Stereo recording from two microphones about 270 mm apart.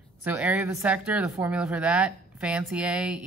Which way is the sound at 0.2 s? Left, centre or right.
Centre.